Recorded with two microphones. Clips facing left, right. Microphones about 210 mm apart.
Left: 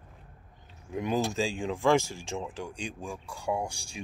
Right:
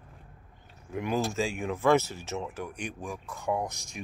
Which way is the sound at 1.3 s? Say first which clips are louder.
Even; 30° left (ahead or behind).